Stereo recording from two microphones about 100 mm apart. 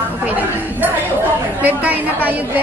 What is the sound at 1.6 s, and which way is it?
Chatter, 15° right (ahead or behind).